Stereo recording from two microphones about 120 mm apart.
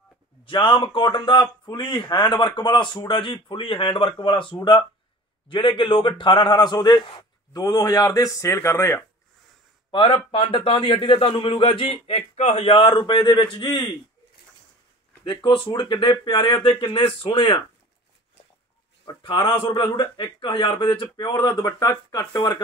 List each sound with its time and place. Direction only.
0.5 s a man's voice: 45° left (ahead or behind); by 9.0 s 20° left (ahead or behind)
9.8 s a man's voice: 40° left (ahead or behind)
12.9 s a man's voice: 40° left (ahead or behind)
15.2 s a man's voice: 40° left (ahead or behind)
16.8 s a man's voice: 50° left (ahead or behind)
19.0 s a man's voice: 35° left (ahead or behind)